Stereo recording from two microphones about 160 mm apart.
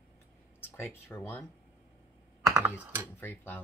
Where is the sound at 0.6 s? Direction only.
15° left (ahead or behind).